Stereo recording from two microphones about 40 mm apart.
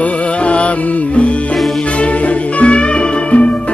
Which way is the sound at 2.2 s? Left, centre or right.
Left.